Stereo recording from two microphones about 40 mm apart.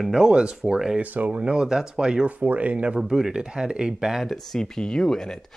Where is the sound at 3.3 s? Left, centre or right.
Right.